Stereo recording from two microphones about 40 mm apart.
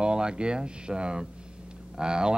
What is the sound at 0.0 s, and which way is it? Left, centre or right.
Speech, right.